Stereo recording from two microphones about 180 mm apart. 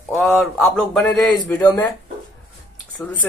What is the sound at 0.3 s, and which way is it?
Speech, 5° left (ahead or behind).